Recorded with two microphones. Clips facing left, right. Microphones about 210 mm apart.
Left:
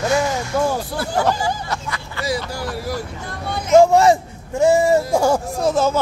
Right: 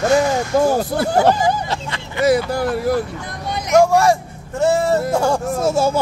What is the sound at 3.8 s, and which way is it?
A man's voice, 20° left (ahead or behind).